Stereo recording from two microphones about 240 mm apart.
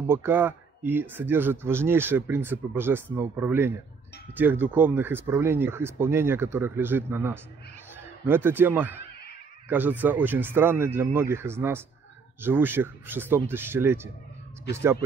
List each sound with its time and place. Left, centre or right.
0.1 s speech: centre